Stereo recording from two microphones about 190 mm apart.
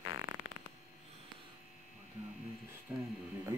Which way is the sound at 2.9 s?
10° right (ahead or behind).